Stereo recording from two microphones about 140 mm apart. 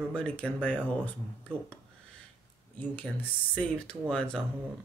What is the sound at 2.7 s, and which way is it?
Speech, 10° left (ahead or behind).